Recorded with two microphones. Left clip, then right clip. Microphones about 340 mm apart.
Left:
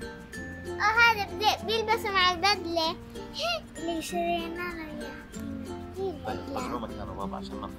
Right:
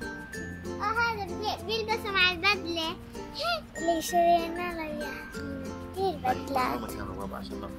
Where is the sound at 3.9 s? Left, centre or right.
Centre.